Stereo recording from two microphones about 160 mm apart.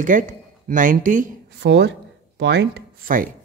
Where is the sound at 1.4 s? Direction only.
90° right.